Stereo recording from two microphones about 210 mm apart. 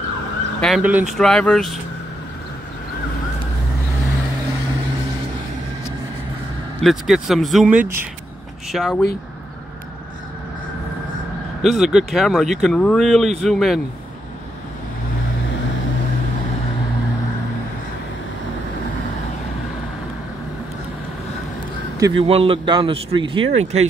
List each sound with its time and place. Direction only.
0.6 s speech: centre (ahead or behind)
6.8 s speech: centre (ahead or behind)
11.6 s speech: centre (ahead or behind)
22.2 s a man's voice: 25° right (ahead or behind)